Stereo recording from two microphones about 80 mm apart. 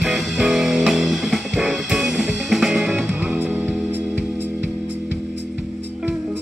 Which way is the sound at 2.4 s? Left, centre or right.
Centre.